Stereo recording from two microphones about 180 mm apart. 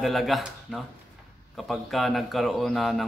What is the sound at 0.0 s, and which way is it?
A man's voice, centre (ahead or behind).